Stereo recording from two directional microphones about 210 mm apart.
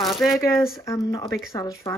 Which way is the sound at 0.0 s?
Centre (ahead or behind).